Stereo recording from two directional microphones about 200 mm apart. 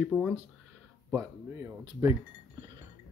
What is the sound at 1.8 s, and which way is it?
Speech, 20° right (ahead or behind).